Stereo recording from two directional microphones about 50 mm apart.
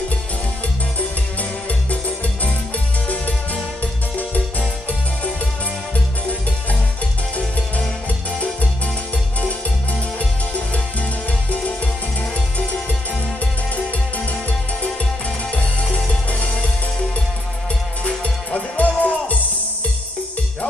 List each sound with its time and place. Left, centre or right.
1.7 s music: left
4.2 s music: left
7.3 s music: left
11.5 s music: left
14.8 s music: left
18.0 s music: left